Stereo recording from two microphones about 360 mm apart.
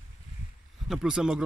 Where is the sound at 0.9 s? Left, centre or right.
Centre.